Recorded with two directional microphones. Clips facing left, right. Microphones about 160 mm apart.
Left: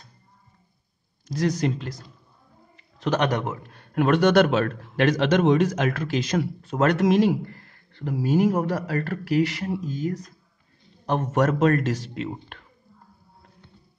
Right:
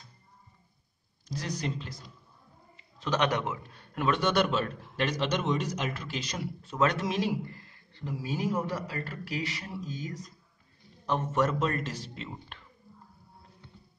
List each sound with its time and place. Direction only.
1.3 s speech: 85° left
3.2 s a man's voice: 45° left (ahead or behind)
3.9 s speech: 65° left (ahead or behind); by 5.8 s 90° left
5.8 s a man's voice: 55° left (ahead or behind)
8.3 s a man's voice: 45° left (ahead or behind)
8.5 s speech: 75° left (ahead or behind); by 12.6 s 55° left (ahead or behind)